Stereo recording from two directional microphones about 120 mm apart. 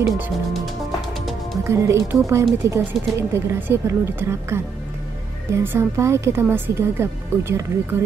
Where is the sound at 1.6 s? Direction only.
25° right (ahead or behind).